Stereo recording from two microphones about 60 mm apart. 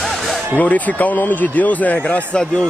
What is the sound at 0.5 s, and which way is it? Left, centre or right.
Speech, left.